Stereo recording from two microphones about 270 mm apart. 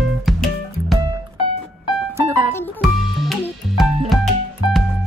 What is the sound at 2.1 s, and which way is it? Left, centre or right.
Music, centre.